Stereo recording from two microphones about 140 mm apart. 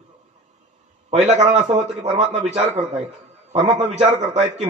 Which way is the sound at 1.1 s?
55° right (ahead or behind).